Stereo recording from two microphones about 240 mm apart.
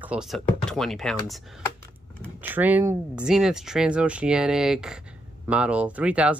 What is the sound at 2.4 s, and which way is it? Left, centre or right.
Speech, centre.